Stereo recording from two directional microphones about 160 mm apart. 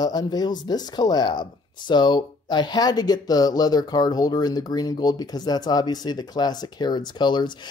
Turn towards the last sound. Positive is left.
turn(degrees=30)  # may be behind; listen again after turning